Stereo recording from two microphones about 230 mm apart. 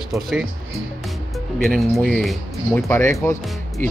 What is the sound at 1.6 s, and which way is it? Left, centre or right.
Speech, centre.